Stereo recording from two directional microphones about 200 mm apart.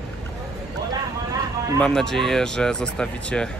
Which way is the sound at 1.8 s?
5° left (ahead or behind).